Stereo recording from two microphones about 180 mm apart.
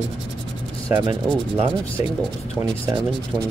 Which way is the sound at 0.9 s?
20° right (ahead or behind).